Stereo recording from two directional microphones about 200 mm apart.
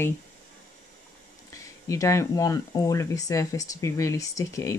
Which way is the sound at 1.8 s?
15° left (ahead or behind).